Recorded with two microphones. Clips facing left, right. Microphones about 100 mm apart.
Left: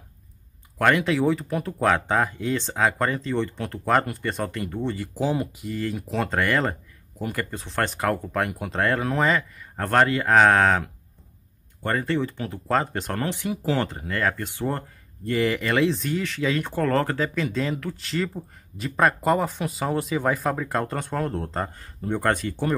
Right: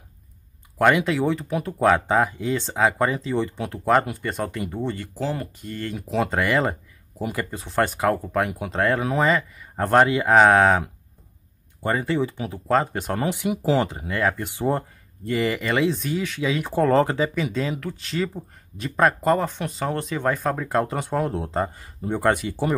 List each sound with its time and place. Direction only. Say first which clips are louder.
0.7 s speech: right 2 dB; 5° right (ahead or behind)
5.1 s speech: left 3 dB; 15° left (ahead or behind)
5.6 s speech: left 2 dB; centre (ahead or behind)
9.8 s speech: right 3 dB; 10° right (ahead or behind)
15.2 s speech: even; centre (ahead or behind)
16.7 s speech: right 8 dB; 15° right (ahead or behind)